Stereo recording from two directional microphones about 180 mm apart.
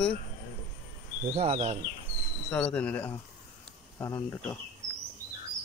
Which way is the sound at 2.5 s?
5° left (ahead or behind).